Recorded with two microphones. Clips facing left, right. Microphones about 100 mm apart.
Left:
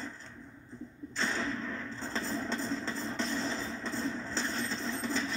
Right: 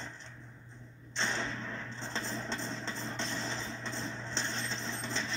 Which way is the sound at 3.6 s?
5° left (ahead or behind).